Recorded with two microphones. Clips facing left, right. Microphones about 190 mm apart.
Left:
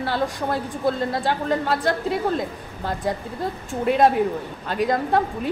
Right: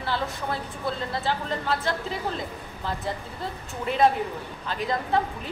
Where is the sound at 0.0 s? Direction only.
45° left (ahead or behind).